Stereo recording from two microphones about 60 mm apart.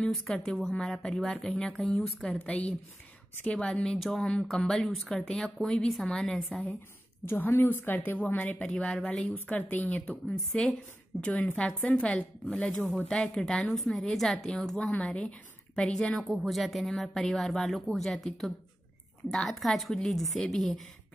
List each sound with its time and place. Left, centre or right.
0.1 s a woman's voice: centre
2.4 s a woman's voice: left
7.2 s a woman's voice: left
8.5 s speech: centre
10.2 s a woman's voice: centre
14.8 s a woman's voice: centre